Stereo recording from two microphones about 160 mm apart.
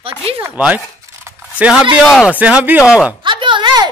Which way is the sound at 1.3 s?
10° right (ahead or behind).